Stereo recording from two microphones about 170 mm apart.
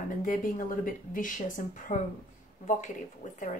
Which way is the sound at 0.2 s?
55° left (ahead or behind).